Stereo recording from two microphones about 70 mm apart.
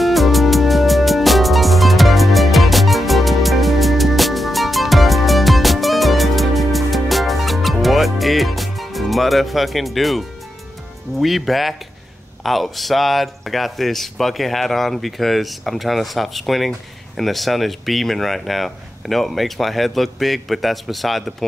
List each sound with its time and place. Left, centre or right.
0.0 s music: centre
11.1 s speech: centre